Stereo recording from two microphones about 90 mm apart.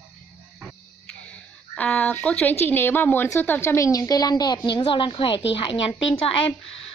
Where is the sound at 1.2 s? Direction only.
15° left (ahead or behind).